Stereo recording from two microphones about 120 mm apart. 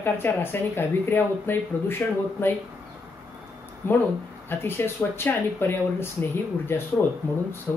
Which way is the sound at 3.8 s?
20° left (ahead or behind).